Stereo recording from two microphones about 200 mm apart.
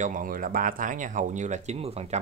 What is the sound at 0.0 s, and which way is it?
Speech, 40° right (ahead or behind).